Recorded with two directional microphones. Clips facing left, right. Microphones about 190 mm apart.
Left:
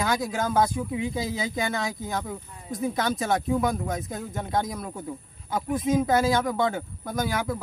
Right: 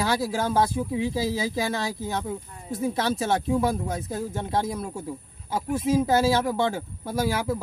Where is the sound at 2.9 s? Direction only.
30° right (ahead or behind).